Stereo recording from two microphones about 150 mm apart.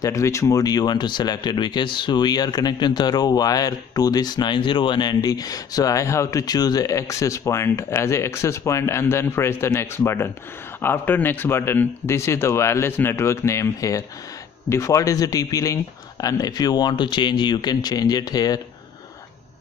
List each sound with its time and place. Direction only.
0.0 s a man's voice: 20° left (ahead or behind)